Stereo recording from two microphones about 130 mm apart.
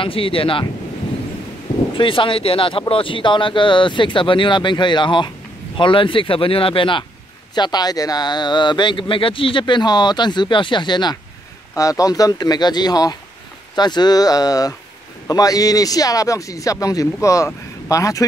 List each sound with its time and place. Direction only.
0.0 s speech: 45° left (ahead or behind)
2.0 s a man's voice: 40° left (ahead or behind); by 18.2 s 25° left (ahead or behind)